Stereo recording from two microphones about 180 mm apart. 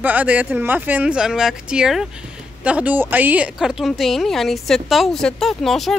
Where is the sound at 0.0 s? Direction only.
10° right (ahead or behind).